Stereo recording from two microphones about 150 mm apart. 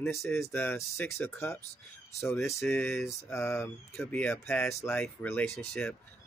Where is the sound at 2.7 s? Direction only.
15° left (ahead or behind).